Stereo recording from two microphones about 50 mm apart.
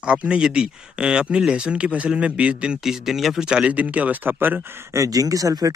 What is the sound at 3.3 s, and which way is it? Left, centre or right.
Speech, centre.